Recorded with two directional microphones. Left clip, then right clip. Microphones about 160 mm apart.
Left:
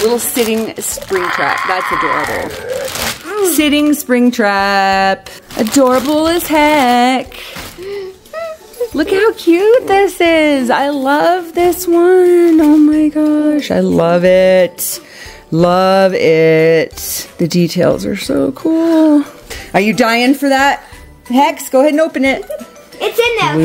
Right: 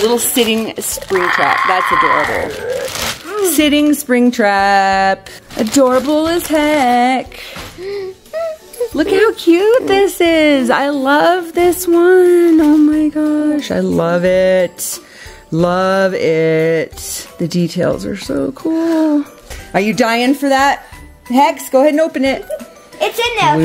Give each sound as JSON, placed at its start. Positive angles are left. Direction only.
{"t": 0.1, "sound": "chopping", "side_deg": -30}
{"t": 1.1, "sound": "speech", "side_deg": -45}
{"t": 2.9, "sound": "a sound", "side_deg": 10}
{"t": 3.4, "sound": "speech", "side_deg": -5}
{"t": 8.3, "sound": "music", "side_deg": -35}
{"t": 8.9, "sound": "speech", "side_deg": -5}
{"t": 15.5, "sound": "music", "side_deg": 15}
{"t": 19.7, "sound": "a woman's voice", "side_deg": 15}
{"t": 22.9, "sound": "speech", "side_deg": -50}